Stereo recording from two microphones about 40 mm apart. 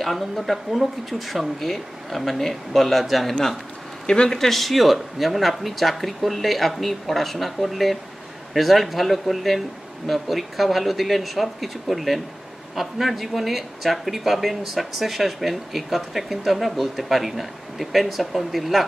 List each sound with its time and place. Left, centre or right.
0.0 s speech: centre
4.0 s speech: centre
4.4 s speech: centre